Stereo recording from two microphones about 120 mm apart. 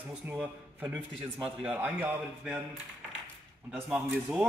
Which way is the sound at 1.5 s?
10° right (ahead or behind).